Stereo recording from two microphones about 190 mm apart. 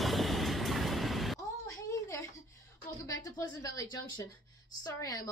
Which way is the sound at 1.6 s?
15° left (ahead or behind).